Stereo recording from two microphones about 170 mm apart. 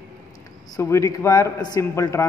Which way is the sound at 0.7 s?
15° left (ahead or behind).